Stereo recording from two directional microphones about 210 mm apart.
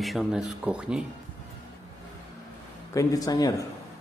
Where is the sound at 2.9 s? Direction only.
15° left (ahead or behind).